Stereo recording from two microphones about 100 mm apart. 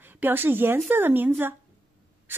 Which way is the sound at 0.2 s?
20° right (ahead or behind).